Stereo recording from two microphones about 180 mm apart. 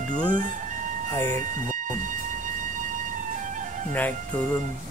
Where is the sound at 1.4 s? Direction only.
45° right (ahead or behind).